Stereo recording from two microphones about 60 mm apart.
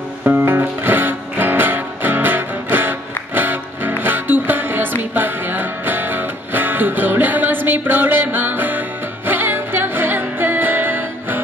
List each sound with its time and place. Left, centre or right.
0.2 s music: right